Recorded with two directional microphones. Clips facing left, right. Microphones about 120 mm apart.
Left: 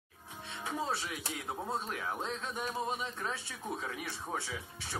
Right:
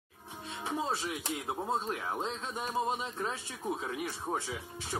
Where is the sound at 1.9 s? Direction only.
30° right (ahead or behind).